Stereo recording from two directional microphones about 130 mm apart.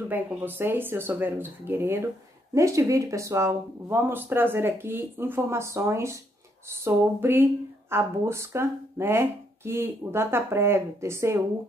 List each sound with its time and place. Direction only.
0.1 s speech: 15° right (ahead or behind)